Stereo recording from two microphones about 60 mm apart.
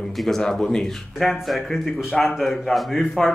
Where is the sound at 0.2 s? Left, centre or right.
Centre.